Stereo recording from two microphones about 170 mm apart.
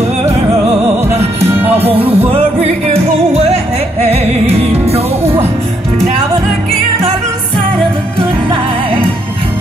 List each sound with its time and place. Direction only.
1.6 s music: 10° right (ahead or behind)
1.9 s music: 35° right (ahead or behind)
6.7 s music: 35° right (ahead or behind)